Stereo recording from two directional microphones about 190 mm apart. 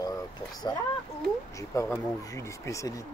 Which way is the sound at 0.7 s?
20° left (ahead or behind).